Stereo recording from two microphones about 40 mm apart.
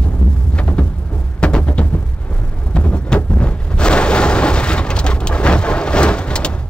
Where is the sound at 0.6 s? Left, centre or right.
Left.